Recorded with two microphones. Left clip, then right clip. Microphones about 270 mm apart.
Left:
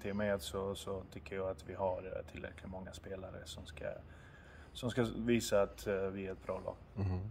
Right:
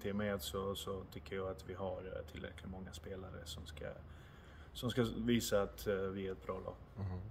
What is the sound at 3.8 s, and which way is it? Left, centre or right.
Speech, centre.